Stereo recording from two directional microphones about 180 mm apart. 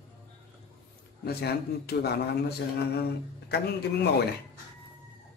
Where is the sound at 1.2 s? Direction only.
60° left (ahead or behind).